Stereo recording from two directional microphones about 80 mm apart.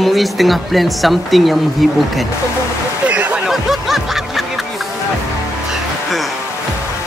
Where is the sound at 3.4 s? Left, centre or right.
Centre.